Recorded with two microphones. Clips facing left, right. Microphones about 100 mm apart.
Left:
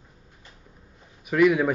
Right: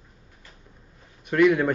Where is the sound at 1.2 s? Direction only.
5° left (ahead or behind).